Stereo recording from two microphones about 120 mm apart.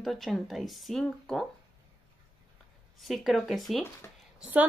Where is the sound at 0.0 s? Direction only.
Centre (ahead or behind).